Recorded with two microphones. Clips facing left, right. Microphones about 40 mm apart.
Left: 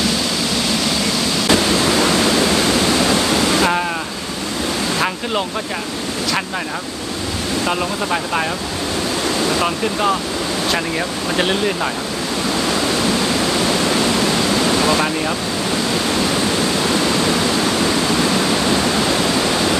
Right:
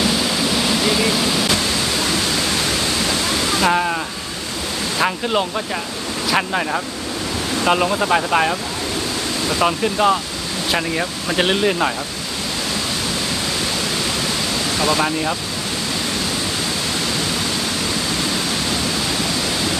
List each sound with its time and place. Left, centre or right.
0.6 s air conditioning: centre
1.5 s a sound: left
3.6 s a sound: centre
4.9 s waves: centre
7.6 s speech: centre
9.6 s speech: centre
14.7 s ocean: left
15.0 s speech: centre
19.2 s waterfall: left